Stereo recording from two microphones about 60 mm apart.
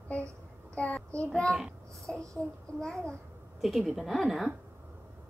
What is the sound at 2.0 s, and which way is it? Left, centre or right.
Speech, right.